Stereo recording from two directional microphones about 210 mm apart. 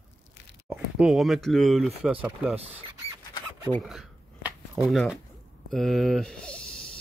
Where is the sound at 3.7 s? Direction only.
Centre (ahead or behind).